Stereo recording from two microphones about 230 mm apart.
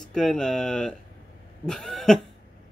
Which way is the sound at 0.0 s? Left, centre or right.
Centre.